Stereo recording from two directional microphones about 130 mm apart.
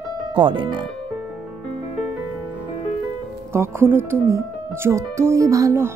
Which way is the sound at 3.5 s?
15° right (ahead or behind).